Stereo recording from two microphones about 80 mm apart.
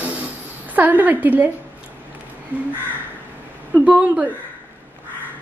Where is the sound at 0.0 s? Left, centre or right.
Centre.